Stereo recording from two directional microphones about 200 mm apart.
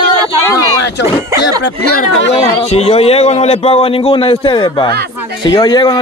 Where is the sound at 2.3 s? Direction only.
30° left (ahead or behind).